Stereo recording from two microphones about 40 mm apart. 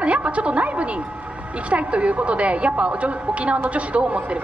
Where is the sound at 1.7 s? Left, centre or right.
Right.